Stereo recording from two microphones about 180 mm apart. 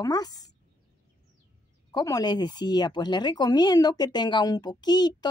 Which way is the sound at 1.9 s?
20° left (ahead or behind).